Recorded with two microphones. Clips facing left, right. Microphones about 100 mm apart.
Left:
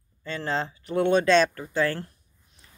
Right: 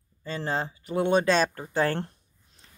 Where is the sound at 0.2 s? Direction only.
20° right (ahead or behind).